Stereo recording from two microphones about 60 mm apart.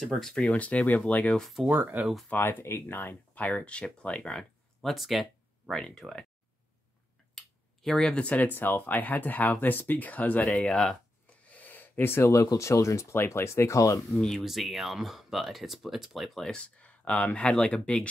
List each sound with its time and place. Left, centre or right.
0.0 s speech: centre
1.7 s speech: right
2.2 s speech: left
3.3 s speech: left
4.9 s speech: centre
5.8 s speech: centre
7.3 s a sound: centre
8.2 s speech: left
10.4 s speech: centre
11.5 s gasp: left
12.6 s speech: left
13.1 s speech: left
14.1 s speech: centre
16.4 s speech: centre